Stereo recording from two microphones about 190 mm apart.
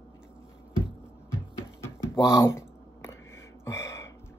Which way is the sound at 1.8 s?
15° left (ahead or behind).